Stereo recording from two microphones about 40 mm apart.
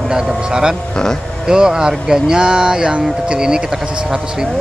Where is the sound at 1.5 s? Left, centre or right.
Centre.